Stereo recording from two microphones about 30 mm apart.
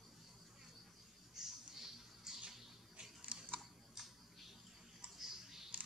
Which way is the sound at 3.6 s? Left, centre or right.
Centre.